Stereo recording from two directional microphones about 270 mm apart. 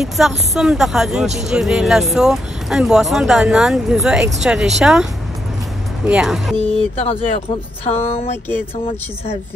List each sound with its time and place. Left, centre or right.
0.0 s speech: centre
6.0 s speech: centre
7.0 s speech: left